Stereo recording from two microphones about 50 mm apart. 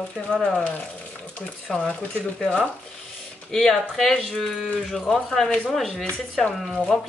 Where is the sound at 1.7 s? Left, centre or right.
Centre.